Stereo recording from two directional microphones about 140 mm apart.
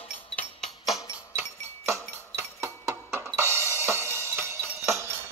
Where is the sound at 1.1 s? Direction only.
15° right (ahead or behind).